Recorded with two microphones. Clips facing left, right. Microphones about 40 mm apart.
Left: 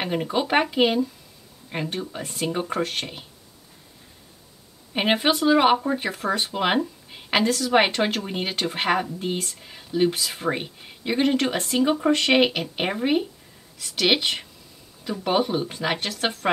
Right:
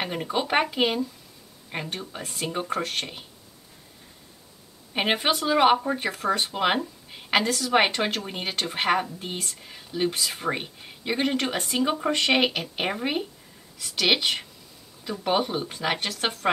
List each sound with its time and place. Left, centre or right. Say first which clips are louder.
0.0 s speech: left 3 dB; centre
4.9 s speech: left 3 dB; centre